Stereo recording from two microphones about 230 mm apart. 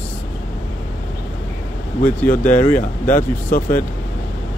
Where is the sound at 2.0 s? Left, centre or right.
Left.